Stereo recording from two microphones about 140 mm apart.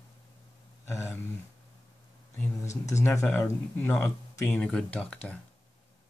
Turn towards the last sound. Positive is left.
turn(degrees=10)  # may be behind; listen again after turning